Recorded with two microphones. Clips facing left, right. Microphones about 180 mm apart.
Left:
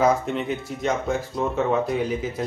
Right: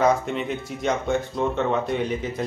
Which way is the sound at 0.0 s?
Centre (ahead or behind).